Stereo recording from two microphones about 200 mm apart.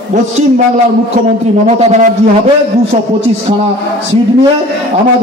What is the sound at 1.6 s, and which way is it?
Speech, 35° right (ahead or behind).